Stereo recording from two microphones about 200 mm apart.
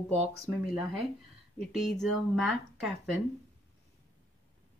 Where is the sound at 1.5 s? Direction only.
Centre (ahead or behind).